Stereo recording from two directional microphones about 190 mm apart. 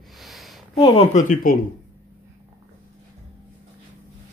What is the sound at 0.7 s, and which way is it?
Speech, 30° left (ahead or behind).